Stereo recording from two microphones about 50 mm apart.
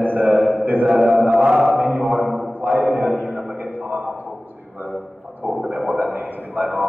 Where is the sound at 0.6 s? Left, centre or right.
Right.